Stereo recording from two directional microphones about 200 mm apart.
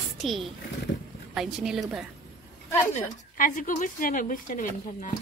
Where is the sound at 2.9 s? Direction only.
40° left (ahead or behind).